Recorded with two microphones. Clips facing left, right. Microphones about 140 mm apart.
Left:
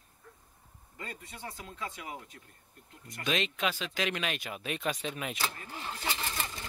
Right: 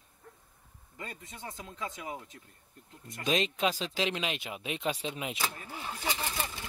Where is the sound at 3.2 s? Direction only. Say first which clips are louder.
Right 3 dB; 35° right (ahead or behind).